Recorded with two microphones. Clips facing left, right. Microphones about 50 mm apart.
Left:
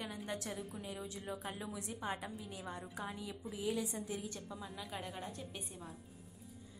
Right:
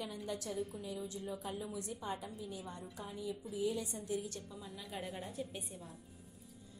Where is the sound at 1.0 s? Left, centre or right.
Left.